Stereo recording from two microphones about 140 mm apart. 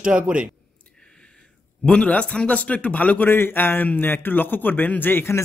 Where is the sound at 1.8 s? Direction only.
5° left (ahead or behind).